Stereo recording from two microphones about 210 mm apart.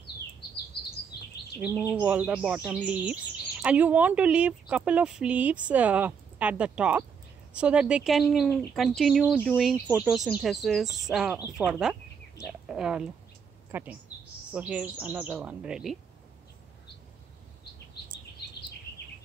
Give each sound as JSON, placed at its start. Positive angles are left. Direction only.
{"t": 1.6, "sound": "speech", "side_deg": -5}
{"t": 18.4, "sound": "a sound", "side_deg": 50}
{"t": 18.9, "sound": "bird", "side_deg": 10}